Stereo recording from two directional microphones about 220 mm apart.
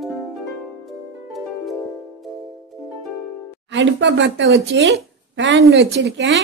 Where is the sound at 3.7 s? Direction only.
55° right (ahead or behind).